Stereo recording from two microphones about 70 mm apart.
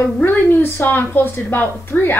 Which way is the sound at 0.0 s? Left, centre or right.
Left.